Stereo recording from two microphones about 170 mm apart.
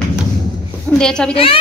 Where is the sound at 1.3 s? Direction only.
35° left (ahead or behind).